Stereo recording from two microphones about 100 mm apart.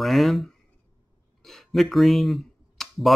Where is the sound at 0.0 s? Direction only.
Centre (ahead or behind).